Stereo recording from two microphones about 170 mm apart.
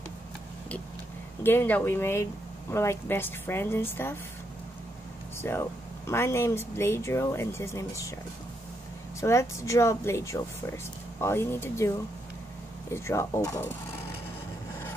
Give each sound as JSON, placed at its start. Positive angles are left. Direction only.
{"t": 1.4, "sound": "speech", "side_deg": 10}
{"t": 5.4, "sound": "speech", "side_deg": 15}
{"t": 9.2, "sound": "speech", "side_deg": 15}
{"t": 12.9, "sound": "speech", "side_deg": 15}